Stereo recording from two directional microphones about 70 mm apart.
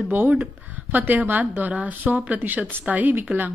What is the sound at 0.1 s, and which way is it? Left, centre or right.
Speech, right.